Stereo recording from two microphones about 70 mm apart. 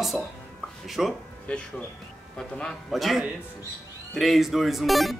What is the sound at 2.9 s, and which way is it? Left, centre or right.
Speech, centre.